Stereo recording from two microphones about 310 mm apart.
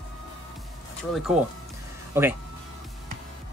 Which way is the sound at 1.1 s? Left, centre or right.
Centre.